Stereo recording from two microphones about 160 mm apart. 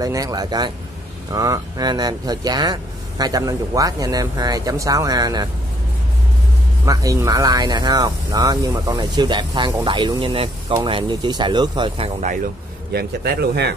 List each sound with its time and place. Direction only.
0.0 s speech: 20° right (ahead or behind)
6.9 s speech: 20° right (ahead or behind)
12.9 s speech: 75° right (ahead or behind)